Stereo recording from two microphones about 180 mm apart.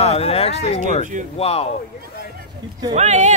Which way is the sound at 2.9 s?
40° right (ahead or behind).